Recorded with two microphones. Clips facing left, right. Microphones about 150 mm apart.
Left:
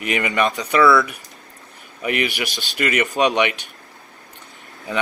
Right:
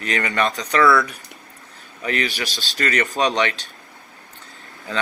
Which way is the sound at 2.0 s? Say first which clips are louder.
Left 2 dB; 15° left (ahead or behind).